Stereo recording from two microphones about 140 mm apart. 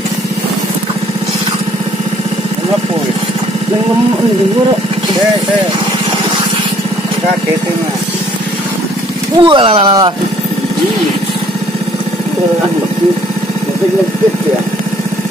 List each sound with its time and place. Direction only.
9.4 s speech: 35° right (ahead or behind)